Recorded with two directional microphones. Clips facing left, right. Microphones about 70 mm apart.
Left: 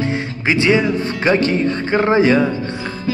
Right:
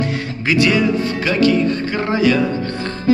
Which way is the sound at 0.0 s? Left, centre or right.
Left.